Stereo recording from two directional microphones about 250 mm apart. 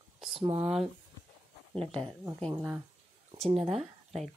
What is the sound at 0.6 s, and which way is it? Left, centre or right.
Speech, centre.